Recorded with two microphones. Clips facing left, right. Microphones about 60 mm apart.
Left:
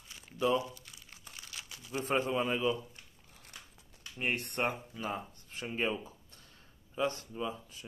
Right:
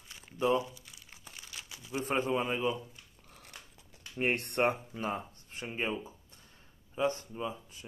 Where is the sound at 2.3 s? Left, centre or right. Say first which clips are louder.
Right 1 dB; centre.